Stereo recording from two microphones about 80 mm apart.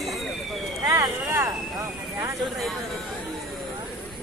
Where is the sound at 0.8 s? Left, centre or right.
Right.